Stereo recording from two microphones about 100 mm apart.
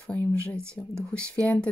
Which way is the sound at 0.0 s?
10° left (ahead or behind).